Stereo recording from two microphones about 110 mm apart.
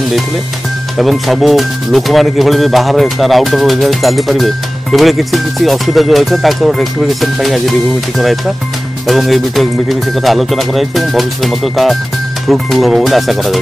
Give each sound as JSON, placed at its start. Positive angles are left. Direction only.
{"t": 0.9, "sound": "speech", "side_deg": 0}